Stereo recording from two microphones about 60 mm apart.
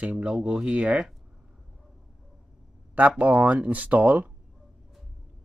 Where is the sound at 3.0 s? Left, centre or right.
Right.